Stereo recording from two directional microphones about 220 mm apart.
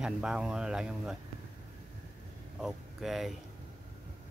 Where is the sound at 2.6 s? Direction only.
Centre (ahead or behind).